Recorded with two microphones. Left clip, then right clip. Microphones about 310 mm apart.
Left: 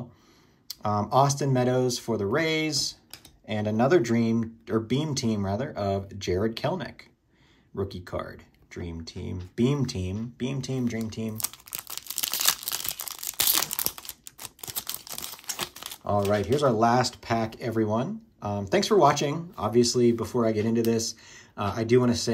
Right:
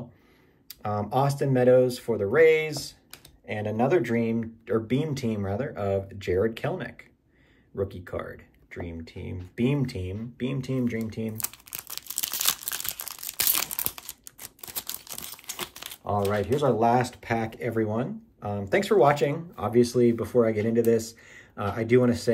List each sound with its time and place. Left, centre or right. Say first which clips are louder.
0.7 s speech: left 3 dB; centre
11.7 s tearing: left 1 dB; centre
16.2 s speech: left 1 dB; centre